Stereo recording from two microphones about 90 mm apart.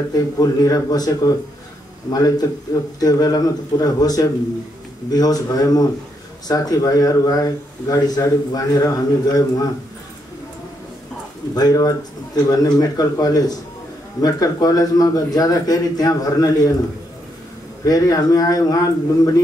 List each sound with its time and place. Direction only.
0.1 s a man's voice: 45° left (ahead or behind)
11.5 s a man's voice: 45° left (ahead or behind)
17.8 s a man's voice: 40° left (ahead or behind)